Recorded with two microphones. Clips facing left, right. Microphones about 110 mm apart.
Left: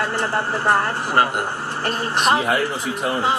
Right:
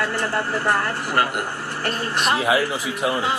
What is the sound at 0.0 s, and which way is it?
Speech, 20° left (ahead or behind).